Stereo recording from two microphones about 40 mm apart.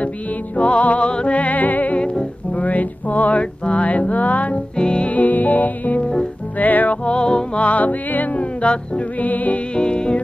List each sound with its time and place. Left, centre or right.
0.6 s music: left
4.7 s music: left
5.0 s music: left
7.1 s music: left
7.5 s music: left
8.4 s music: left
9.2 s music: left
9.8 s insect: left